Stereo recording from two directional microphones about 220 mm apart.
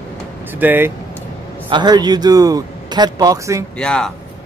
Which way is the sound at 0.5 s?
10° right (ahead or behind).